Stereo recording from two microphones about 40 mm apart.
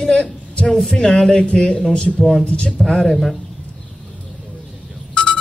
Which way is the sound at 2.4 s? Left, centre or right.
Left.